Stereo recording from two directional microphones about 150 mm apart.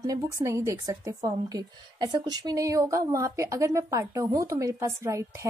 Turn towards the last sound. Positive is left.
turn(degrees=-20)  # may be behind; listen again after turning